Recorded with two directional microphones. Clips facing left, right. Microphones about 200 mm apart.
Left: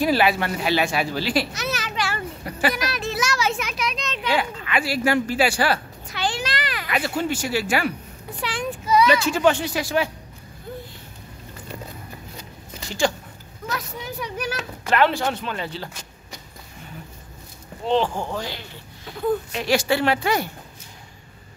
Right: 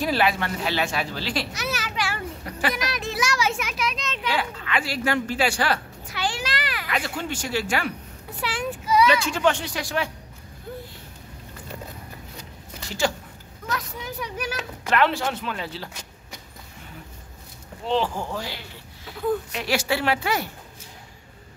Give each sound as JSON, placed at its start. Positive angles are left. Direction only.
{"t": 0.0, "sound": "a woman's voice", "side_deg": 5}
{"t": 1.5, "sound": "children playing", "side_deg": -10}
{"t": 2.7, "sound": "a sound", "side_deg": -20}
{"t": 4.3, "sound": "speech", "side_deg": 10}
{"t": 6.0, "sound": "a sound", "side_deg": -10}
{"t": 6.9, "sound": "a woman's voice", "side_deg": 5}
{"t": 8.4, "sound": "child singing", "side_deg": -5}
{"t": 9.1, "sound": "speech", "side_deg": 10}
{"t": 13.7, "sound": "speech", "side_deg": 5}
{"t": 14.4, "sound": "speech", "side_deg": -10}
{"t": 18.0, "sound": "speech", "side_deg": 25}
{"t": 18.3, "sound": "speech", "side_deg": -5}